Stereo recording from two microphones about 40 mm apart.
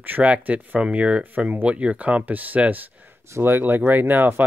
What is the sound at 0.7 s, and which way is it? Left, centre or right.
Speech, right.